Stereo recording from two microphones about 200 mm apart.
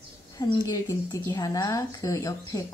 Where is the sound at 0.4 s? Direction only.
20° left (ahead or behind).